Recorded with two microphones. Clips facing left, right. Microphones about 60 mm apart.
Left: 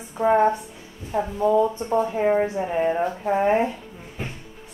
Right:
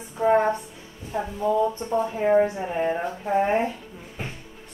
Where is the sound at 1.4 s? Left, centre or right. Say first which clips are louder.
Left 3 dB; centre.